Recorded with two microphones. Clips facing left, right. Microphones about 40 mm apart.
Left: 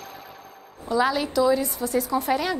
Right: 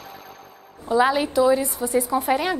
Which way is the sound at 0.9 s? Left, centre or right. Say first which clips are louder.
Right 3 dB; right.